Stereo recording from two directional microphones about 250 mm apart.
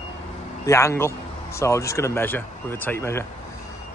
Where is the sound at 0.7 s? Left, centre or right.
Centre.